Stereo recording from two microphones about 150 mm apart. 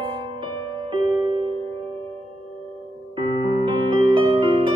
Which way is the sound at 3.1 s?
30° right (ahead or behind).